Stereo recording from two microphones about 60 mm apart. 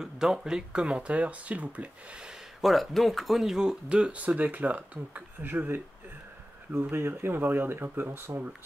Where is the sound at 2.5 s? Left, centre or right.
Centre.